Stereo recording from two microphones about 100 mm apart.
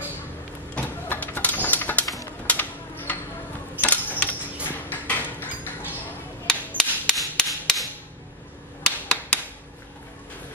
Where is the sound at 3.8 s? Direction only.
15° left (ahead or behind).